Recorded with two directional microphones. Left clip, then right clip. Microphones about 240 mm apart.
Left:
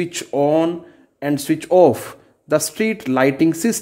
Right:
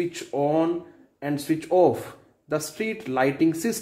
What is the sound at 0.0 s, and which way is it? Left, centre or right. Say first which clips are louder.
Speech: left 7 dB; left.